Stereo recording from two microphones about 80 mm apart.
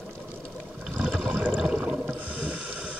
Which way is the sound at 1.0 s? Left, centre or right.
Centre.